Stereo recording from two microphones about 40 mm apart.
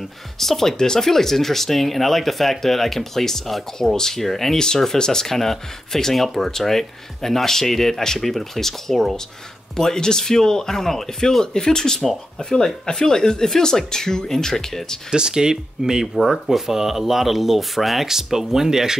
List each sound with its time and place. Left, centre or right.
0.4 s speech: centre
15.0 s speech: centre